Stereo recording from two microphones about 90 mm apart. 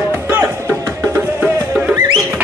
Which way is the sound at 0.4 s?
30° right (ahead or behind).